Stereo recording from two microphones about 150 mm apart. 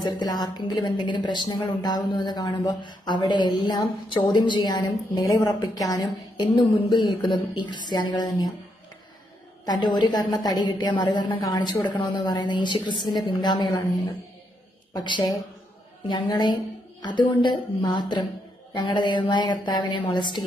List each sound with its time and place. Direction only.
0.0 s a woman's voice: 25° left (ahead or behind)
9.7 s a woman's voice: 30° left (ahead or behind)
15.0 s a woman's voice: 30° left (ahead or behind)